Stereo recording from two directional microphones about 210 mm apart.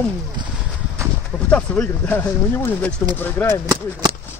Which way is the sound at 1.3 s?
5° left (ahead or behind).